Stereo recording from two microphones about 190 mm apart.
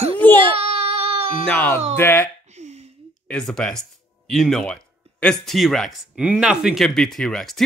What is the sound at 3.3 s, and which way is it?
Speech, 5° left (ahead or behind).